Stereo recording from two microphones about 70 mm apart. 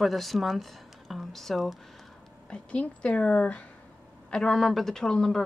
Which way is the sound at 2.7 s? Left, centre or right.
Centre.